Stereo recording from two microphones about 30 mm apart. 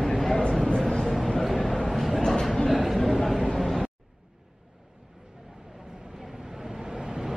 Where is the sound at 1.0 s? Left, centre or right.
Centre.